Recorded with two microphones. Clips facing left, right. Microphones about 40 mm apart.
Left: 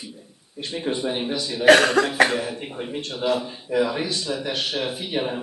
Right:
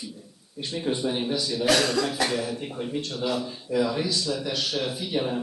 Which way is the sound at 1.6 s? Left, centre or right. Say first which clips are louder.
Left 9 dB; left.